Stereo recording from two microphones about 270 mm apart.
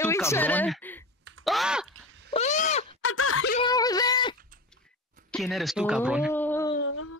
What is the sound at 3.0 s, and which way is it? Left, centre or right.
Groan, left.